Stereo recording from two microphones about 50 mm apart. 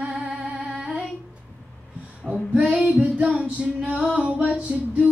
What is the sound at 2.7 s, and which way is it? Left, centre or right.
Music, right.